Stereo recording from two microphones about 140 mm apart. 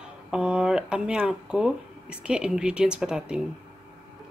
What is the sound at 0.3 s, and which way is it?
Speech, 5° right (ahead or behind).